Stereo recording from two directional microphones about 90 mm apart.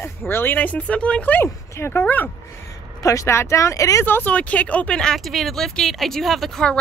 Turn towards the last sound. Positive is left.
turn(degrees=0)  # may be behind; listen again after turning